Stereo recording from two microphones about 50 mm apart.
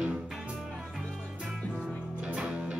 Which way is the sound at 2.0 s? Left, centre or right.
Right.